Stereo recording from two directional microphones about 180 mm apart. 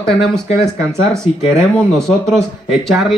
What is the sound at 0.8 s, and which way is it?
Speech, 15° right (ahead or behind).